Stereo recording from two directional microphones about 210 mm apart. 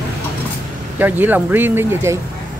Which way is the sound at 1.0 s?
10° right (ahead or behind).